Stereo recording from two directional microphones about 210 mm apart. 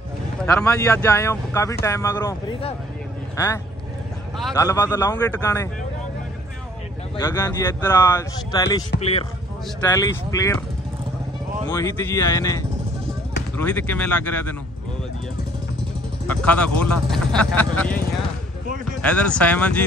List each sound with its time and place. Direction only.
0.6 s speech: 15° left (ahead or behind)
4.6 s speech: 15° left (ahead or behind)
7.2 s speech: 15° left (ahead or behind)
9.8 s speech: 15° left (ahead or behind)
11.7 s speech: 15° left (ahead or behind)
16.3 s speech: 5° left (ahead or behind)